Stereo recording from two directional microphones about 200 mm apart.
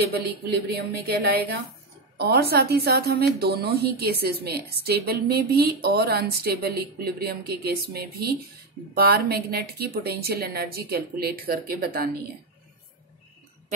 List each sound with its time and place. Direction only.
0.1 s a woman's voice: 55° right (ahead or behind)